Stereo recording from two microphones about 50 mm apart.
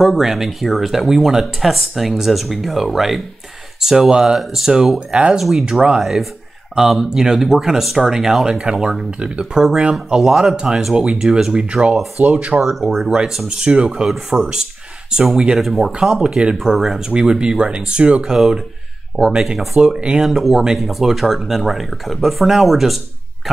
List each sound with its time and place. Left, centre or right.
0.0 s speech: centre
5.1 s speech: centre
12.2 s speech: right
12.5 s speech: centre
13.0 s speech: centre
13.9 s speech: centre
15.6 s speech: centre
16.0 s speech: centre
16.7 s speech: centre
17.1 s speech: centre
19.8 s speech: centre
20.2 s speech: centre